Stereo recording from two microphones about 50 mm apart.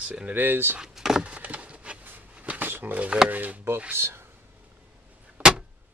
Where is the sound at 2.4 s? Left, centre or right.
Right.